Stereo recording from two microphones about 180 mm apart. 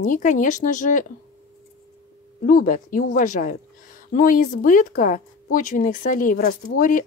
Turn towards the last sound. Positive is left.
turn(degrees=50)  # may be behind; listen again after turning